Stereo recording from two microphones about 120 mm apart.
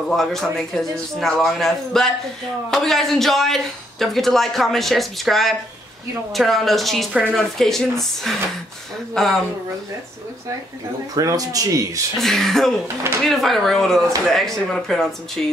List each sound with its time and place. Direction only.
0.1 s a man's voice: 5° left (ahead or behind)
11.1 s speech: 30° right (ahead or behind)
12.2 s a man's voice: 5° left (ahead or behind)
12.8 s speech: 20° right (ahead or behind)
13.2 s a man's voice: centre (ahead or behind)